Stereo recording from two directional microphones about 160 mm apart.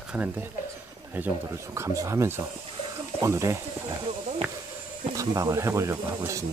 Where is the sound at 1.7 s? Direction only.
20° right (ahead or behind).